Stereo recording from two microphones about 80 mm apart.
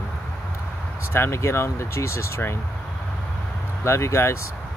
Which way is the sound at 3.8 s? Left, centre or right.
Left.